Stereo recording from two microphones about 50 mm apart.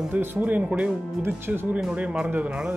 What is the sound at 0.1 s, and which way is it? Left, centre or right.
Speech, right.